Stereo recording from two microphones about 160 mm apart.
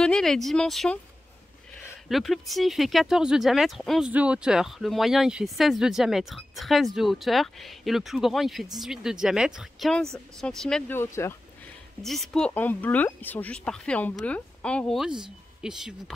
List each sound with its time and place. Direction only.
0.0 s speech: 5° left (ahead or behind)
2.0 s speech: centre (ahead or behind)
11.2 s speech: 15° left (ahead or behind)
12.0 s speech: centre (ahead or behind)